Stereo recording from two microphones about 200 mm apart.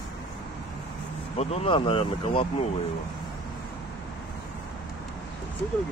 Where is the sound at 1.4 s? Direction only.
30° left (ahead or behind).